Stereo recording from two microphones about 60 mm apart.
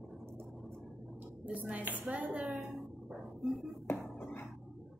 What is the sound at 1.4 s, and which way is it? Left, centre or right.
A woman's voice, right.